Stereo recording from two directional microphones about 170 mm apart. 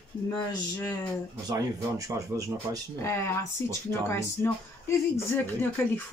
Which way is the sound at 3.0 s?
15° left (ahead or behind).